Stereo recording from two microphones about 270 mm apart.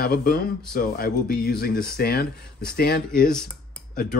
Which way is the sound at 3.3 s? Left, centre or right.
Centre.